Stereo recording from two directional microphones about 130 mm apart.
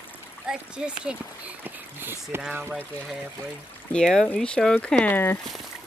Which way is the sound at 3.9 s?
5° left (ahead or behind).